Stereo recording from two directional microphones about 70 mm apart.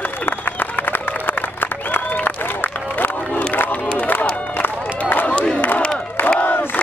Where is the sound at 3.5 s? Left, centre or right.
Left.